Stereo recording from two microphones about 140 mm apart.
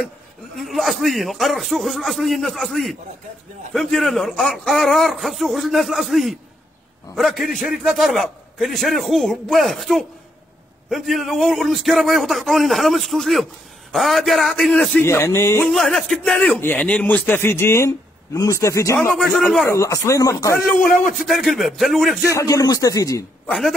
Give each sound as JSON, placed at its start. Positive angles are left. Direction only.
{"t": 0.6, "sound": "a man's voice", "side_deg": 0}
{"t": 15.0, "sound": "speech", "side_deg": 20}
{"t": 15.7, "sound": "a man's voice", "side_deg": 5}
{"t": 21.2, "sound": "a man's voice", "side_deg": 0}
{"t": 22.3, "sound": "speech", "side_deg": 25}
{"t": 23.4, "sound": "a man's voice", "side_deg": 5}